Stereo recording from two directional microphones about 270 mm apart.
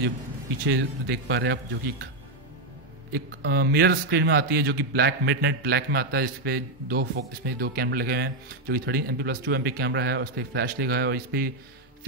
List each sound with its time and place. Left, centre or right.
0.7 s speech: right
3.1 s speech: right